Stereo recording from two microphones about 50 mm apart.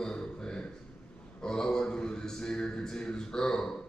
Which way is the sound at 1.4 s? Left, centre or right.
Centre.